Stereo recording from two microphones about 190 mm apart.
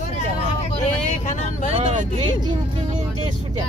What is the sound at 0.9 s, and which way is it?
Speech, 40° left (ahead or behind).